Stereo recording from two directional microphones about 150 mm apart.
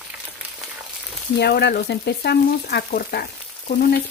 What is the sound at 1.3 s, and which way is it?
Speech, 90° left.